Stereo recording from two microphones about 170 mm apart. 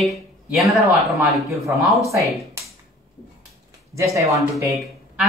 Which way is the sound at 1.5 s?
15° right (ahead or behind).